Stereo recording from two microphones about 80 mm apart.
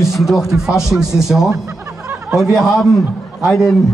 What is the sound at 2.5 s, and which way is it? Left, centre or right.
Speech, centre.